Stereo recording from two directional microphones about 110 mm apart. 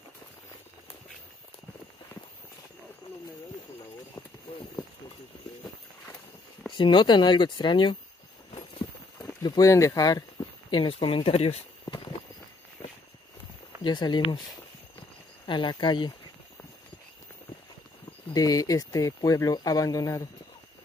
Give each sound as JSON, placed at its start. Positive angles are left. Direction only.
{"t": 6.8, "sound": "speech", "side_deg": 45}
{"t": 9.4, "sound": "speech", "side_deg": 30}
{"t": 10.7, "sound": "speech", "side_deg": 50}
{"t": 13.8, "sound": "speech", "side_deg": 45}
{"t": 15.4, "sound": "speech", "side_deg": 45}
{"t": 18.3, "sound": "speech", "side_deg": 35}